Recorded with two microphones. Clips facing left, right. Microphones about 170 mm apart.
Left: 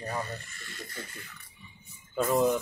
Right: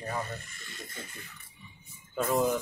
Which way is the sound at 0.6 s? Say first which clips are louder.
Left 3 dB; 20° right (ahead or behind).